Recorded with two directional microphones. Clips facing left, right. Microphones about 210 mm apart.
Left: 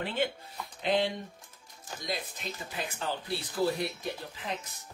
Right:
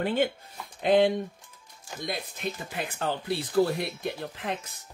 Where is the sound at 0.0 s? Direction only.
45° right (ahead or behind).